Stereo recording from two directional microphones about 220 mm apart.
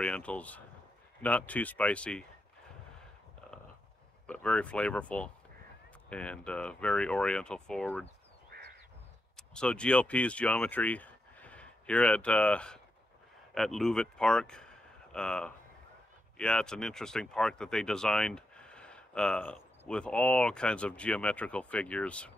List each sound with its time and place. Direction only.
0.0 s speech: 5° left (ahead or behind)
4.3 s speech: 5° left (ahead or behind)
8.5 s crow: 45° right (ahead or behind)
9.4 s speech: 5° left (ahead or behind)